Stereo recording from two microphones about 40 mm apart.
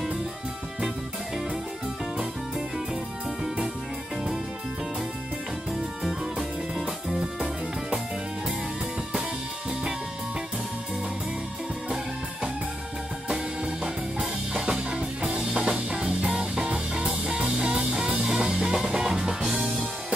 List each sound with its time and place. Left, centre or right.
5.7 s music: centre
13.8 s music: centre